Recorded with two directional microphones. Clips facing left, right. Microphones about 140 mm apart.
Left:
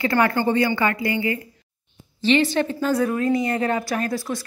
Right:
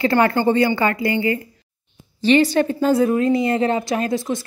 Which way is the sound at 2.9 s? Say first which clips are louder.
Right 4 dB; 25° right (ahead or behind).